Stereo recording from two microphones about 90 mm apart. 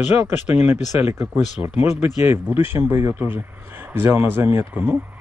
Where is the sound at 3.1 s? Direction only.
20° right (ahead or behind).